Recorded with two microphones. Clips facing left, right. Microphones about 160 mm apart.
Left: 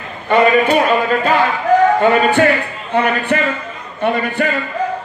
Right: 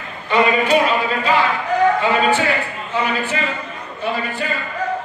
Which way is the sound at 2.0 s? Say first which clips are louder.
Left 5 dB; 55° left (ahead or behind).